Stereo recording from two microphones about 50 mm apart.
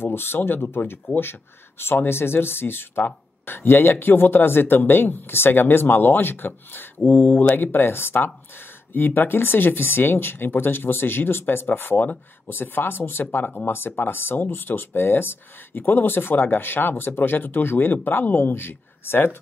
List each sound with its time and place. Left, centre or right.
0.0 s speech: left